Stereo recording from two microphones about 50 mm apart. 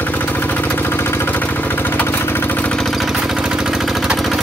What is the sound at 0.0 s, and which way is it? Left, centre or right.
Vehicle, left.